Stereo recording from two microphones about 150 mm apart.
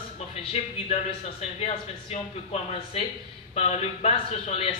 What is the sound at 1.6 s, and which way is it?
Speech, 45° left (ahead or behind).